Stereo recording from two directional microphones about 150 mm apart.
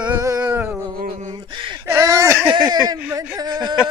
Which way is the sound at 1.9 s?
20° right (ahead or behind).